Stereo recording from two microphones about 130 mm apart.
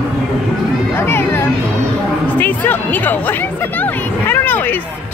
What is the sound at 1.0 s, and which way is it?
Speech, 20° left (ahead or behind).